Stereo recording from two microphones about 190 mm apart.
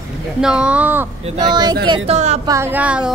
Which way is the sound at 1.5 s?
20° right (ahead or behind).